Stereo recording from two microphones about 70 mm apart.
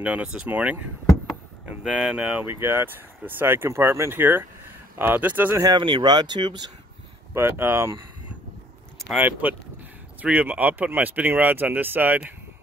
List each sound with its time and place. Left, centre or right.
0.0 s speech: right
5.6 s speech: right
7.3 s speech: right
9.2 s speech: right